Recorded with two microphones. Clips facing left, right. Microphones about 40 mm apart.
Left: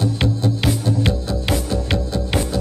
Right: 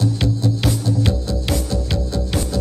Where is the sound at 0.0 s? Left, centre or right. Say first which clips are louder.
Even; left.